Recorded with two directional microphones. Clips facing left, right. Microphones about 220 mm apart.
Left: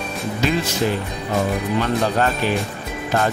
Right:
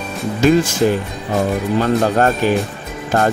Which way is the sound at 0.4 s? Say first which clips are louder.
Right 9 dB; 45° right (ahead or behind).